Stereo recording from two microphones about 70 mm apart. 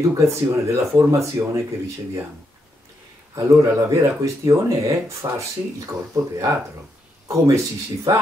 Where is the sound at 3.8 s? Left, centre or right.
Right.